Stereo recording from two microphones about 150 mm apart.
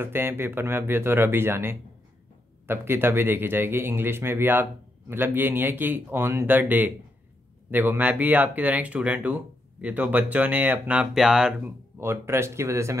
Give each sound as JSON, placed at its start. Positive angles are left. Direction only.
{"t": 0.0, "sound": "speech", "side_deg": -15}
{"t": 12.0, "sound": "speech", "side_deg": -15}